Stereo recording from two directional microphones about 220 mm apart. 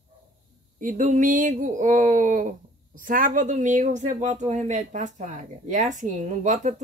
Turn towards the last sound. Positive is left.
turn(degrees=-35)  # may be behind; listen again after turning